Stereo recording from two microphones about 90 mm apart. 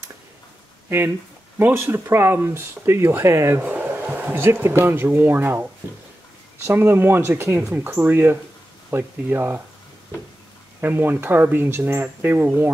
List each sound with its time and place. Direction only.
0.8 s speech: 25° right (ahead or behind)
10.8 s speech: 25° right (ahead or behind)